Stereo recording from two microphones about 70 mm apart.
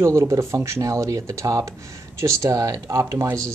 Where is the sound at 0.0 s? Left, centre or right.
Right.